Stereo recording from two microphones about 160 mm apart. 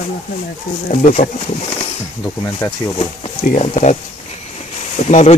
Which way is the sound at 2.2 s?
20° left (ahead or behind).